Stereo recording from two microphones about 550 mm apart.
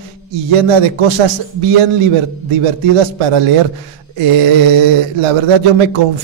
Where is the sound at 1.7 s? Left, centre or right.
Right.